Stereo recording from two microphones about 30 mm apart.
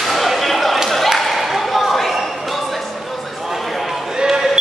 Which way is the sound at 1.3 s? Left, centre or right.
Centre.